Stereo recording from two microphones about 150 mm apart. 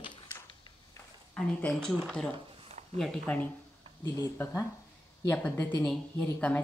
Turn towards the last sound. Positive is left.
turn(degrees=10)  # may be behind; listen again after turning